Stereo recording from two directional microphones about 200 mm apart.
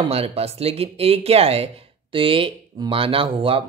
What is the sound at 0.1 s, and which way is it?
Speech, 30° right (ahead or behind).